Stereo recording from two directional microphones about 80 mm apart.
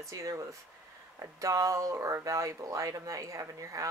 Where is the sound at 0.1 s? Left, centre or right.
Right.